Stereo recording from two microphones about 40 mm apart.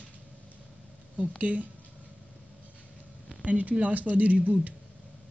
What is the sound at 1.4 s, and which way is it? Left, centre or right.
Speech, right.